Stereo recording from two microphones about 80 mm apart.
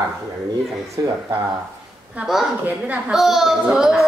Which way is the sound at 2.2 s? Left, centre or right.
Centre.